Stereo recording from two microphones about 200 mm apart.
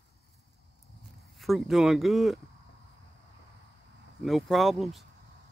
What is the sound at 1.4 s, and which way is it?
Speech, centre (ahead or behind).